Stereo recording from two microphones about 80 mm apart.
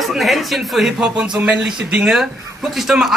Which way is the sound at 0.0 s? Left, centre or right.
Centre.